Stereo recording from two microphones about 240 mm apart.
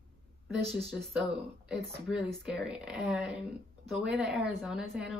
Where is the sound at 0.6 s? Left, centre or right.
Right.